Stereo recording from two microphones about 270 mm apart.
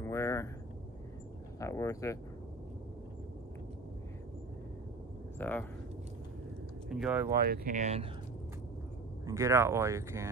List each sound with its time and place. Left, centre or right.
0.0 s vehicle: centre
1.6 s speech: centre
5.4 s speech: centre
6.9 s speech: centre
7.3 s speech: right
9.2 s speech: centre